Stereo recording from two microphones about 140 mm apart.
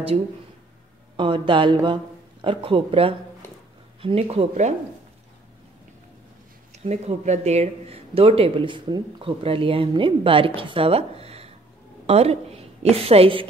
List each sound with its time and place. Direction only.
1.1 s speech: 35° right (ahead or behind); by 4.7 s 50° right (ahead or behind)
6.7 s speech: 50° right (ahead or behind)